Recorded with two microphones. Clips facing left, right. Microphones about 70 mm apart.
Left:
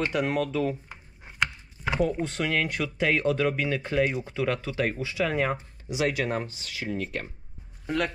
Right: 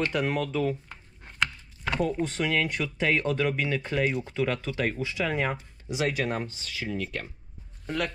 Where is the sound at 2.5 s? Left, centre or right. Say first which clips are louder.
Even; left.